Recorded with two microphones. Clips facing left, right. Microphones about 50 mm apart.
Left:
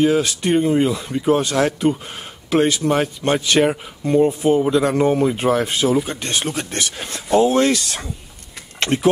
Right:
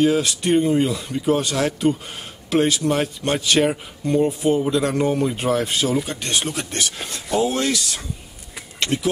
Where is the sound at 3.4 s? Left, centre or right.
Centre.